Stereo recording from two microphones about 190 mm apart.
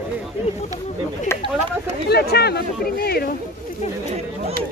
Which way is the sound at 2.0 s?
55° left (ahead or behind).